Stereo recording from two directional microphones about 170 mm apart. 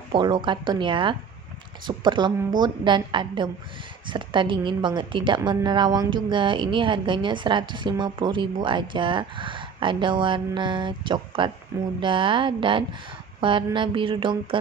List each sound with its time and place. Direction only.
0.1 s a woman's voice: 30° right (ahead or behind)